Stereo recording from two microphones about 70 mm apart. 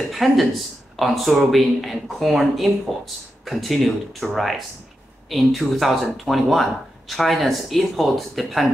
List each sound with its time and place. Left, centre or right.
0.1 s speech: centre